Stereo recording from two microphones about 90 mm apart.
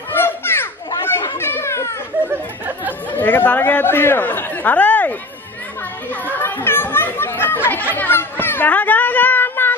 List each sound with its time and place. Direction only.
0.1 s children playing: 25° left (ahead or behind)
3.1 s speech: 20° left (ahead or behind)
6.2 s chatter: 20° left (ahead or behind)
7.9 s a sound: 25° left (ahead or behind)